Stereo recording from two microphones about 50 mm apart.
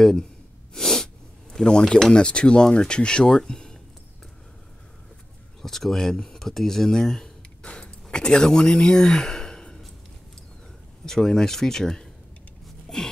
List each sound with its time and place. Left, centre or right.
0.0 s speech: centre
5.6 s speech: centre
11.1 s speech: centre
12.9 s gasp: centre